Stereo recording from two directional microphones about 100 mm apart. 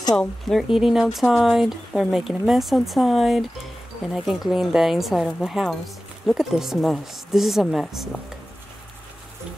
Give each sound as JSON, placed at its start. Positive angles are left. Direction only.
{"t": 0.1, "sound": "speech", "side_deg": 5}